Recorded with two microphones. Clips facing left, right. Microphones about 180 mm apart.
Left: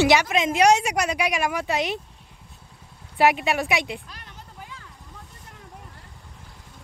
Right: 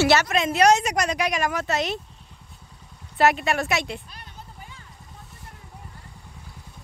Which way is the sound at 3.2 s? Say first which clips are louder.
Even; 10° left (ahead or behind).